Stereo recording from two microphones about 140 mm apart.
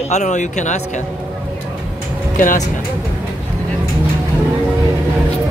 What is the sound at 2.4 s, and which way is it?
Speech, 70° left (ahead or behind).